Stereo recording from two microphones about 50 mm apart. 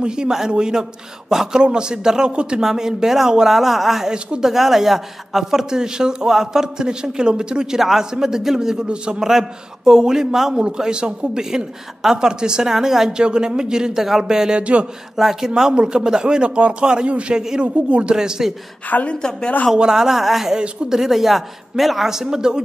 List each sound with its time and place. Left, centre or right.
0.0 s a man's voice: centre
4.1 s a man's voice: centre
4.5 s a man's voice: centre; by 14.9 s right
15.1 s a man's voice: centre
17.4 s a man's voice: centre
17.8 s speech: right
18.1 s a man's voice: centre
18.9 s a woman's voice: left
19.1 s a woman's voice: centre
19.7 s a man's voice: centre